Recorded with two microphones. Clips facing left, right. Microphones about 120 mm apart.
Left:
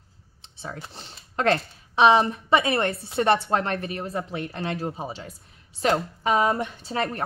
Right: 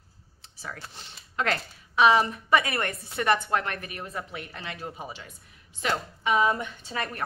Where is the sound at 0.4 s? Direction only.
25° left (ahead or behind).